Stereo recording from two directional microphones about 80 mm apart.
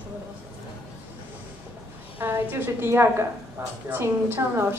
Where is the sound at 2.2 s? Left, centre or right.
Right.